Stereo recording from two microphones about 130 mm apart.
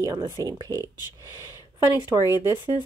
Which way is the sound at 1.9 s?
30° left (ahead or behind).